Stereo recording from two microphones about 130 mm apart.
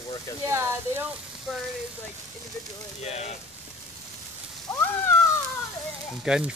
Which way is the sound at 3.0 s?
55° left (ahead or behind).